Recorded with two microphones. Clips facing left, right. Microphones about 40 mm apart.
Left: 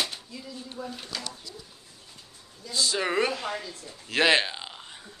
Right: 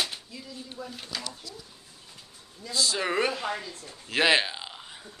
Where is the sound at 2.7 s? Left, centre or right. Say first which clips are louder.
Left 1 dB; centre.